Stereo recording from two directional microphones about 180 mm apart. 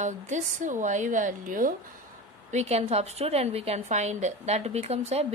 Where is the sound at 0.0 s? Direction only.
45° right (ahead or behind).